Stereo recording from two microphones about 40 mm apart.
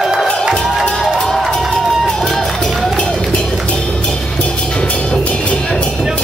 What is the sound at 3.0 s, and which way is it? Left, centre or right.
Run, left.